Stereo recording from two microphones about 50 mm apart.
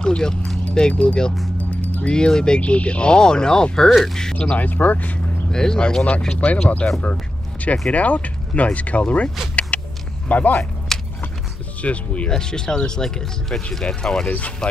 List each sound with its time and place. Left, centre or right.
0.0 s speech: centre
1.6 s music: left
2.0 s speech: centre
4.6 s speech: left
5.5 s speech: centre
7.9 s speech: left
9.7 s vehicle: left
10.2 s speech: left
10.9 s a sound: centre
11.8 s speech: left
12.3 s speech: centre
14.2 s speech: left